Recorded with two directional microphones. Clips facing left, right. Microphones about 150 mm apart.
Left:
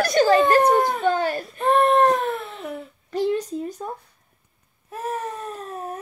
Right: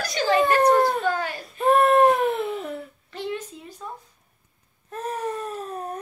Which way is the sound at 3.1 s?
40° left (ahead or behind).